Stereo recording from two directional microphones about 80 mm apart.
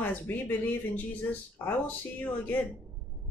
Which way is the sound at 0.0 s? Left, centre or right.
Left.